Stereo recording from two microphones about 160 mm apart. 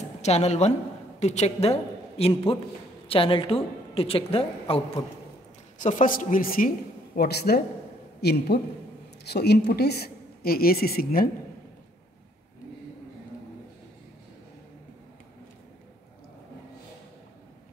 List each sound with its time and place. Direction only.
0.2 s a woman's voice: 40° left (ahead or behind)
5.8 s a woman's voice: 55° left (ahead or behind)
7.2 s a man's voice: 85° left; by 11.2 s 65° left (ahead or behind)